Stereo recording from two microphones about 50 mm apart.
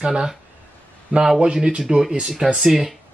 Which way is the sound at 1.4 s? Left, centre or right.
Centre.